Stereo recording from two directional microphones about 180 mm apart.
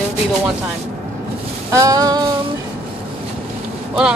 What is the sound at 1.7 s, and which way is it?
Female singing, 20° right (ahead or behind).